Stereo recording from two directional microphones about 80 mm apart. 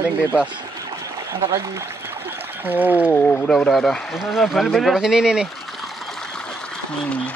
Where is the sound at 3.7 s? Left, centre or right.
Centre.